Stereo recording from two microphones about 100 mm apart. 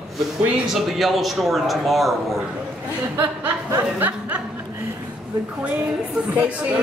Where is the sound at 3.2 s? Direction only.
20° right (ahead or behind).